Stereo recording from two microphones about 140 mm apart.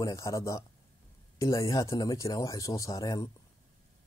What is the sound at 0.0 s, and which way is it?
Speech, 25° left (ahead or behind).